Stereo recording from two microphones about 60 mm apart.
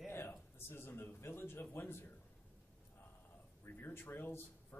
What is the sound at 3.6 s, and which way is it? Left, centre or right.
Speech, left.